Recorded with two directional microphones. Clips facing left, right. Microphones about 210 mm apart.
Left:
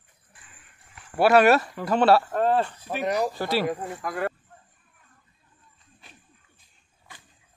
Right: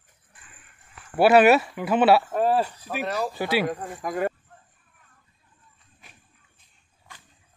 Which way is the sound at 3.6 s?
10° left (ahead or behind).